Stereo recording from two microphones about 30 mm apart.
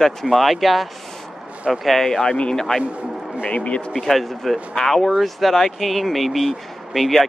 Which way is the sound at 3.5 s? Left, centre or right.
Left.